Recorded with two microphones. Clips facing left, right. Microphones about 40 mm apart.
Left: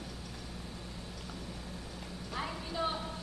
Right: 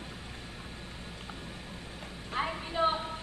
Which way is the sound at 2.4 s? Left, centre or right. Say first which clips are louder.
Right 6 dB; right.